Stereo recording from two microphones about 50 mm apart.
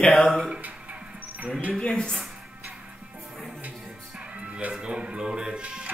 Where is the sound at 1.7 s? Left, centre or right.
Centre.